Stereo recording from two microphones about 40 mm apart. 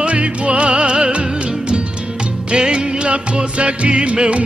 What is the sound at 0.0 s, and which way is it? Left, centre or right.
Music, right.